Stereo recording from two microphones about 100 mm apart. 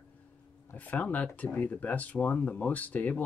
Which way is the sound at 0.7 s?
15° left (ahead or behind).